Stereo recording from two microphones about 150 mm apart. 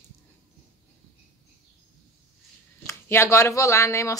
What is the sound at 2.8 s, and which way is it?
Speech, 20° left (ahead or behind).